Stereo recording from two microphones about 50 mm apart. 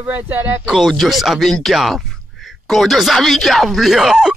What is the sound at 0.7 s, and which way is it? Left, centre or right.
Speech, centre.